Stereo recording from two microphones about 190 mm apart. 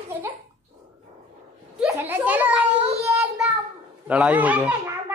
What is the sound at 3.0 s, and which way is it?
Child singing, 15° right (ahead or behind).